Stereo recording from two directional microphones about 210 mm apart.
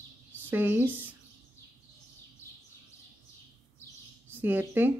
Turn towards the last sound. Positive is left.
turn(degrees=-10)  # may be behind; listen again after turning